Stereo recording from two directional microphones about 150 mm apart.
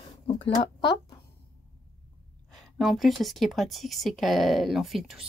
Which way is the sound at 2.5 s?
Centre (ahead or behind).